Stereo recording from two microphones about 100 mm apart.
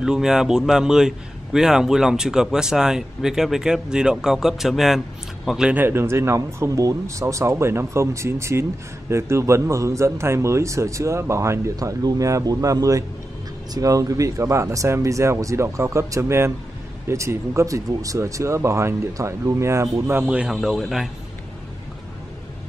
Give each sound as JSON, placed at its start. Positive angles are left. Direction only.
{"t": 0.0, "sound": "a man's voice", "side_deg": -5}
{"t": 5.7, "sound": "speech", "side_deg": -20}
{"t": 20.2, "sound": "a man's voice", "side_deg": -10}